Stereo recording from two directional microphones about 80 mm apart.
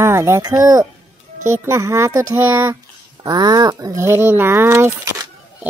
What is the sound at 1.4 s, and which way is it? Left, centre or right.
Speech, right.